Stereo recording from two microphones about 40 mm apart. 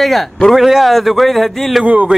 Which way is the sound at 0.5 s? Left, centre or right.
Centre.